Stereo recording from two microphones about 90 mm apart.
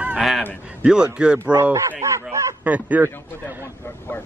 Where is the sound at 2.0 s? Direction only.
30° right (ahead or behind).